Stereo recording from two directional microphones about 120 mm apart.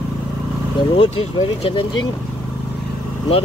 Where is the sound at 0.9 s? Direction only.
50° left (ahead or behind).